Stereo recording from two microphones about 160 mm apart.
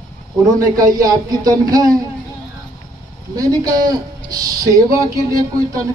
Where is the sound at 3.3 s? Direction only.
20° right (ahead or behind).